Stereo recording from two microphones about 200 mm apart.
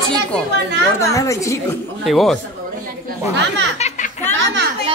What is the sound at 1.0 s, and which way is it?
Speech, 15° left (ahead or behind).